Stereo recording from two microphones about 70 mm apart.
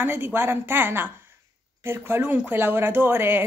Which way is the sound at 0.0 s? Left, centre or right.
Right.